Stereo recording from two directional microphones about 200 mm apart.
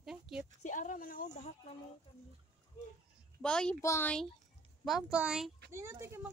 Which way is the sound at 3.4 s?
5° left (ahead or behind).